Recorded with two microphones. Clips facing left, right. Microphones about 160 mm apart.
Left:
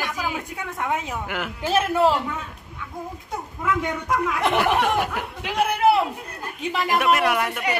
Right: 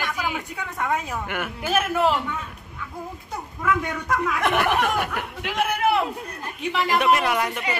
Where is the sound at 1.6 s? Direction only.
30° left (ahead or behind).